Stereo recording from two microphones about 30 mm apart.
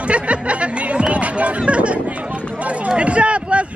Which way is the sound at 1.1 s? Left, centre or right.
Right.